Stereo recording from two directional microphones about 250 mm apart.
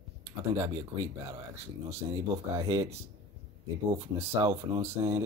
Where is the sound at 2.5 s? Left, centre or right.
Centre.